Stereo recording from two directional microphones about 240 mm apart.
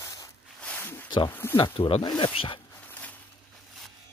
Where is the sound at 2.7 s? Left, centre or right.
Centre.